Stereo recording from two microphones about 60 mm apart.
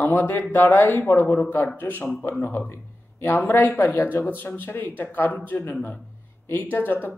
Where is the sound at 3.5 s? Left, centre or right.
Left.